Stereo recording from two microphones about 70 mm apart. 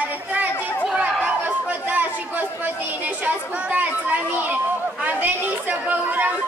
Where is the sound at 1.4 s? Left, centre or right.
Right.